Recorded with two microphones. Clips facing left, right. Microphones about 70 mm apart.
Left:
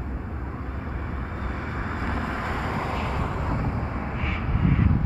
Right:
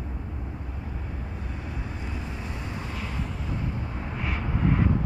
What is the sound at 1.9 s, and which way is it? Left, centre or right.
Vehicle, left.